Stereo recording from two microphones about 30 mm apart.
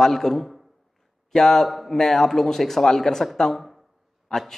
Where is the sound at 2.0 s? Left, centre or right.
Centre.